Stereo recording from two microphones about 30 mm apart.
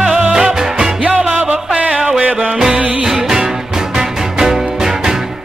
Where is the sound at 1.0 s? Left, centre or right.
Right.